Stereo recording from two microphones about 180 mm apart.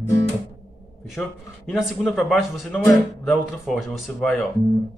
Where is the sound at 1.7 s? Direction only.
Centre (ahead or behind).